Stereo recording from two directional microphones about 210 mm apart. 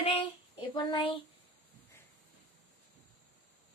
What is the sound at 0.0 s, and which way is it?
Child singing, 25° left (ahead or behind).